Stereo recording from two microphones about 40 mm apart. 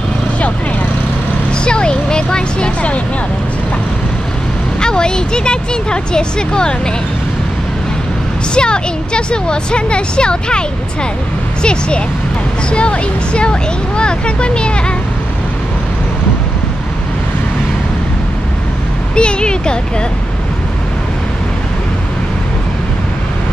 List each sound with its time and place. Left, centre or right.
1.6 s a sound: left
4.7 s speech: centre
8.5 s speech: left
11.6 s speech: left
19.1 s speech: left